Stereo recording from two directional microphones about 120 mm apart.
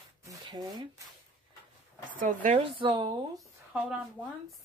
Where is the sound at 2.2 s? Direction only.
90° right.